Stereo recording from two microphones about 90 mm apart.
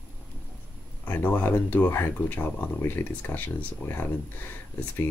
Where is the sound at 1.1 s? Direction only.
20° left (ahead or behind).